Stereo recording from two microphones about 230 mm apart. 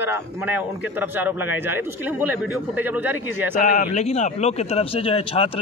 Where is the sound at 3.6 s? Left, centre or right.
Left.